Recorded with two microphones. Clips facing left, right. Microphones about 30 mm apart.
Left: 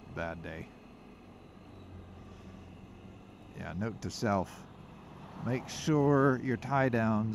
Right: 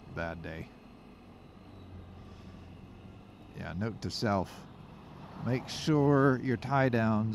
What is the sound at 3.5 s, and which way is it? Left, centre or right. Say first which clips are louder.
Speech: right 1 dB; right.